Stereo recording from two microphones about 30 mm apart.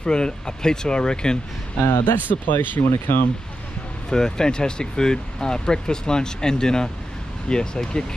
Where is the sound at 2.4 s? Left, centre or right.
Left.